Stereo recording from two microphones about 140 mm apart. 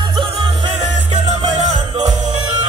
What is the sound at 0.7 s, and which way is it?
Music, 55° right (ahead or behind).